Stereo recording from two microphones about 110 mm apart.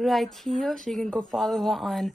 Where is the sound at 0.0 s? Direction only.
Centre (ahead or behind).